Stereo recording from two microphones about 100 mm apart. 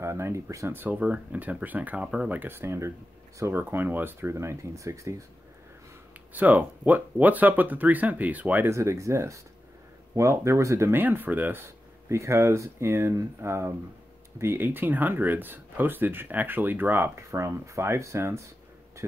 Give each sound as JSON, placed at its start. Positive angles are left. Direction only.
{"t": 0.0, "sound": "speech", "side_deg": -25}
{"t": 6.3, "sound": "speech", "side_deg": -15}
{"t": 8.7, "sound": "speech", "side_deg": -30}